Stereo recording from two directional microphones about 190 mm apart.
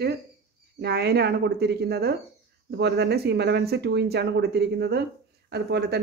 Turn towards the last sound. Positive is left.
turn(degrees=-60)  # may be behind; listen again after turning